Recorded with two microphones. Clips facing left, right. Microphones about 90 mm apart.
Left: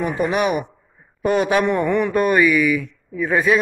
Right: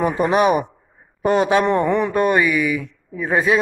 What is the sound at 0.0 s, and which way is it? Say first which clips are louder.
A man's voice: right 3 dB; 35° right (ahead or behind).